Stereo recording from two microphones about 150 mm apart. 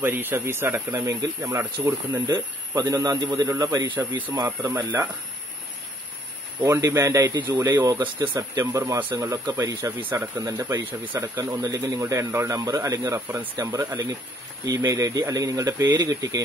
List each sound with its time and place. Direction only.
0.0 s speech: 15° right (ahead or behind)
6.6 s speech: 20° right (ahead or behind)
9.9 s speech: 10° right (ahead or behind)
10.4 s speech: 20° right (ahead or behind)